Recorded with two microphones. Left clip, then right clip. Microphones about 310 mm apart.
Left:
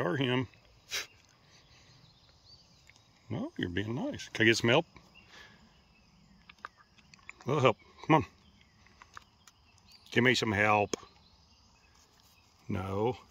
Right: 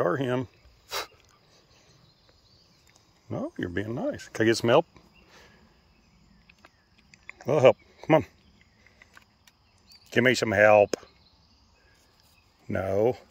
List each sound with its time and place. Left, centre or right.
0.0 s speech: centre
0.8 s a sound: right
3.3 s speech: centre
7.2 s a sound: centre
10.0 s speech: centre
12.6 s speech: centre